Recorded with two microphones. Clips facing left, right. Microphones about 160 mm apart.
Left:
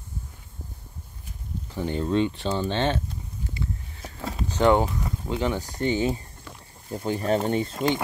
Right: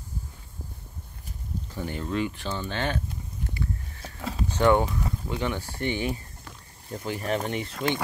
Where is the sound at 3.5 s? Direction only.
15° left (ahead or behind).